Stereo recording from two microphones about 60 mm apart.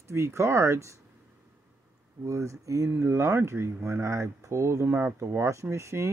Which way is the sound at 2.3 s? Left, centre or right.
Right.